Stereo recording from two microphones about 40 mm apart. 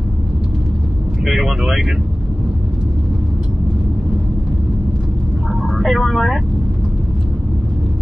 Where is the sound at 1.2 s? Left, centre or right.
Centre.